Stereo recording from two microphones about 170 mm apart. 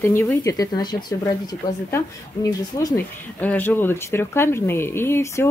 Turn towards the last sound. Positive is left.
turn(degrees=15)  # may be behind; listen again after turning